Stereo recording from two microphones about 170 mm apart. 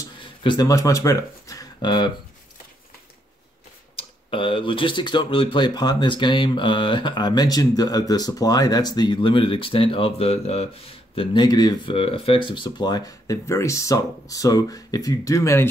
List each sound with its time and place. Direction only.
0.0 s speech: 30° left (ahead or behind)
3.9 s speech: 30° left (ahead or behind)